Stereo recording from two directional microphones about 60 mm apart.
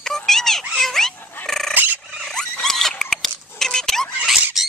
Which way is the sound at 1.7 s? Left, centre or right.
Right.